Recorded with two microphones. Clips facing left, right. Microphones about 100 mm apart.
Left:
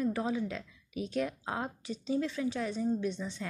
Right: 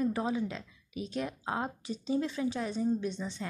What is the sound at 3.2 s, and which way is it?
Speech, 20° right (ahead or behind).